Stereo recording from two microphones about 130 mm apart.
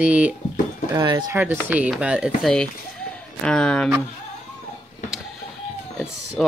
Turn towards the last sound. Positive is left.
turn(degrees=5)  # may be behind; listen again after turning